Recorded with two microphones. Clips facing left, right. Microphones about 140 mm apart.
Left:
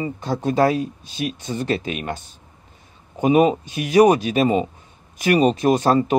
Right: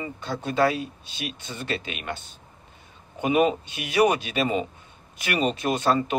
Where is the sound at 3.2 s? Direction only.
40° left (ahead or behind).